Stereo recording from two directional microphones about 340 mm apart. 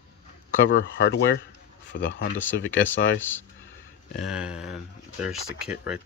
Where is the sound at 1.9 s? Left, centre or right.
Left.